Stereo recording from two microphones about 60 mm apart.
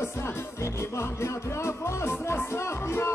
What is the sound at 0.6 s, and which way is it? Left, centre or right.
Music, left.